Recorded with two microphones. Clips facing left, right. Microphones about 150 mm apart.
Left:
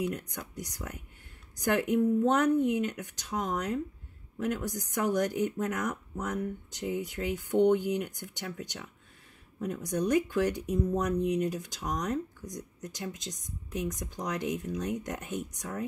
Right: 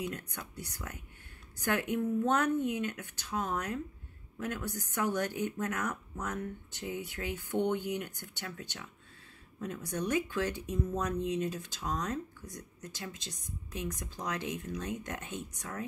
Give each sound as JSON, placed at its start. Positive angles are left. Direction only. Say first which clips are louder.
{"t": 0.0, "sound": "speech", "louder": "left 5 dB", "side_deg": 15}